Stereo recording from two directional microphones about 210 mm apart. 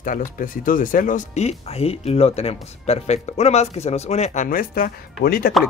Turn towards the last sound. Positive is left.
turn(degrees=45)  # may be behind; listen again after turning